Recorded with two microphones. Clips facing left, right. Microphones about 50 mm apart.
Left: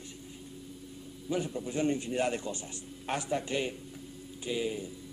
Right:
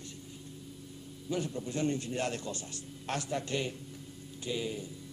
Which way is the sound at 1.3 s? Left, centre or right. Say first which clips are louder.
Left 2 dB; centre.